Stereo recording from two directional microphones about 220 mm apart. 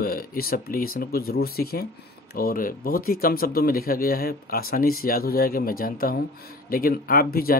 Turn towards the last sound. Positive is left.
turn(degrees=40)  # may be behind; listen again after turning